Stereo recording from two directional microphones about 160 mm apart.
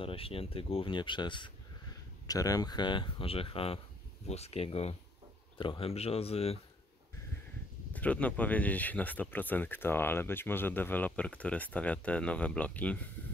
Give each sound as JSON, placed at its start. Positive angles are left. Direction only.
{"t": 0.0, "sound": "speech", "side_deg": 35}
{"t": 7.9, "sound": "speech", "side_deg": 10}